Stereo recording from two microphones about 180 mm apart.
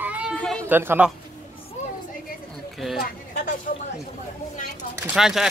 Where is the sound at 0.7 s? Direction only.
10° right (ahead or behind).